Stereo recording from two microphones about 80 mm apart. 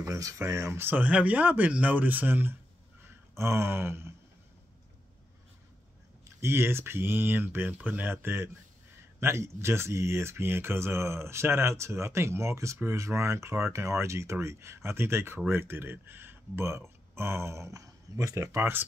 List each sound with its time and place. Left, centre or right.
0.0 s speech: right
6.2 s speech: right